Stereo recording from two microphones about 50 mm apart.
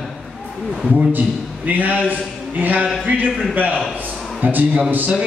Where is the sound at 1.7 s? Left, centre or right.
Right.